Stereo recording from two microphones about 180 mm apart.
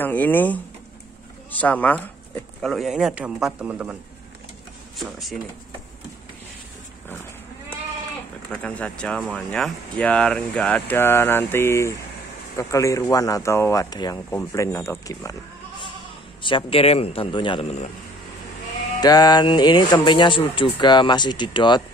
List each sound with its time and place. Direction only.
0.0 s speech: 10° left (ahead or behind)
8.5 s speech: 5° left (ahead or behind)
16.4 s a man's voice: 30° left (ahead or behind)
18.9 s speech: 20° left (ahead or behind)